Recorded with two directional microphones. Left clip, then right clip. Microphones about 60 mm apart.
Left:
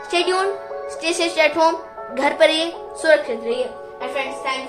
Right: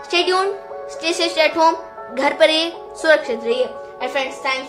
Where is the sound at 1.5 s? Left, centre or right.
Centre.